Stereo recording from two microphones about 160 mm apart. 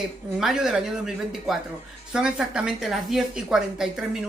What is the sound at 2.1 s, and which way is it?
A man's voice, 5° right (ahead or behind).